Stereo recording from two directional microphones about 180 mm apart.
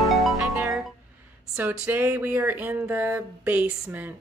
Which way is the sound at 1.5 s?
10° right (ahead or behind).